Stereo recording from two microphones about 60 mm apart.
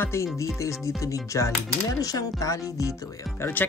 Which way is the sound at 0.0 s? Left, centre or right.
Left.